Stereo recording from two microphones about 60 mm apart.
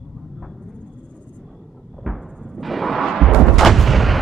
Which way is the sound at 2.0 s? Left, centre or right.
Centre.